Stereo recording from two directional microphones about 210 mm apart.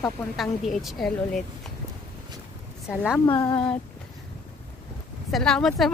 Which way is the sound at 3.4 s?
20° left (ahead or behind).